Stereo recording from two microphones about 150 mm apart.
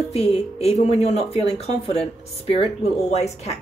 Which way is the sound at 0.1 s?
45° left (ahead or behind).